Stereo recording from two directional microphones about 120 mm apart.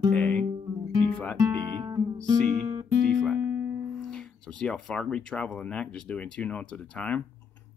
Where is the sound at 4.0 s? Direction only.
5° left (ahead or behind).